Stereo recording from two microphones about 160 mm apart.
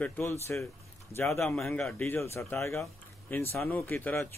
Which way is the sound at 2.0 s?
15° left (ahead or behind).